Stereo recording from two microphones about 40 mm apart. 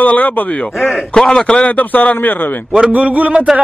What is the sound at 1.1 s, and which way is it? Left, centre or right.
Speech, centre.